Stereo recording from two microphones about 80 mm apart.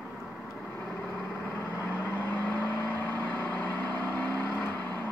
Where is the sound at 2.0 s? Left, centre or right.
Left.